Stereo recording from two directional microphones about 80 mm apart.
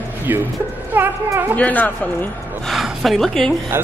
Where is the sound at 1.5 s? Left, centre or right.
Left.